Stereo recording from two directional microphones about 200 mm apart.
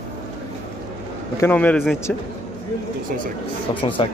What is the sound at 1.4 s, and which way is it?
Speech, 10° left (ahead or behind).